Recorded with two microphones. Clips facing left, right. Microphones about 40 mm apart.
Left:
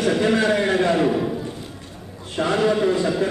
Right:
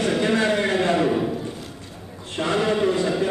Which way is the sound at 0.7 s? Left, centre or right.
Right.